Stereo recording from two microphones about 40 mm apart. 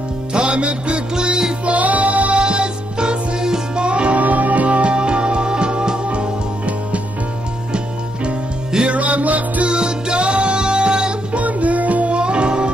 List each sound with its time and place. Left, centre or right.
0.3 s music: right
1.7 s music: right
2.4 s music: right
4.2 s music: right
8.9 s music: right
9.7 s music: right
11.3 s music: right
12.2 s music: right